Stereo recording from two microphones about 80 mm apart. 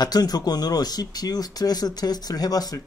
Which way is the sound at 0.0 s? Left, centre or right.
Left.